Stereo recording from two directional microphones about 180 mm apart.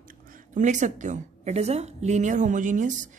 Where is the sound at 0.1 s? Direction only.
45° right (ahead or behind).